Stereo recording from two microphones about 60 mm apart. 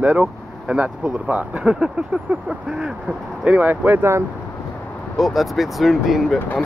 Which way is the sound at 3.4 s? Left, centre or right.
Right.